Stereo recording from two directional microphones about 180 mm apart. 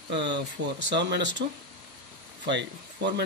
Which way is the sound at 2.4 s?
75° right (ahead or behind).